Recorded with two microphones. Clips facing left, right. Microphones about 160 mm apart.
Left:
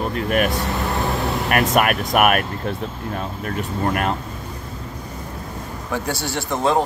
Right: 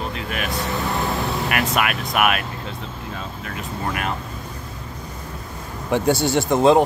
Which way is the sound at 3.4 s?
45° left (ahead or behind).